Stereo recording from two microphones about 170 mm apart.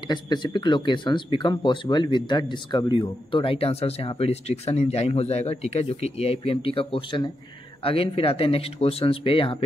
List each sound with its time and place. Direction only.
0.1 s speech: 25° left (ahead or behind)